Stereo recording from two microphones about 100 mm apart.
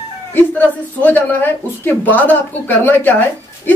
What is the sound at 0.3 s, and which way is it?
A man's voice, 20° left (ahead or behind).